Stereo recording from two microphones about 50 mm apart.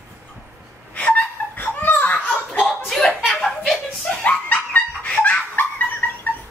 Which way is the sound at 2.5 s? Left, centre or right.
Centre.